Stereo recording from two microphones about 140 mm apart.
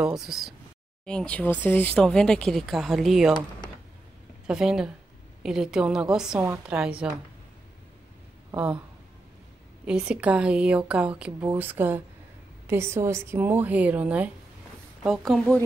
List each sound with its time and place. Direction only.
0.0 s speech: 5° right (ahead or behind)
4.5 s speech: 5° right (ahead or behind)
6.4 s a woman's voice: 15° right (ahead or behind)
9.8 s a woman's voice: 5° right (ahead or behind)